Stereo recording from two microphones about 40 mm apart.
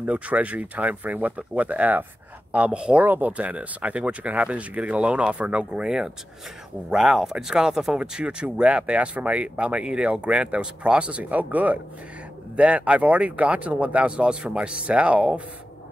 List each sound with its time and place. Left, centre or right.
0.0 s speech: right
5.9 s speech: centre
8.1 s speech: right